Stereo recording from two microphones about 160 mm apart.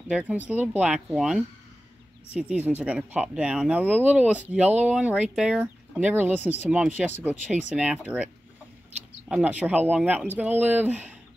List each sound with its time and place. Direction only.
0.1 s speech: 10° right (ahead or behind)